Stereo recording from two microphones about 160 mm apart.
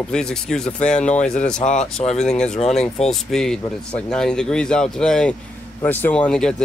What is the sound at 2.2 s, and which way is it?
Speech, 5° left (ahead or behind).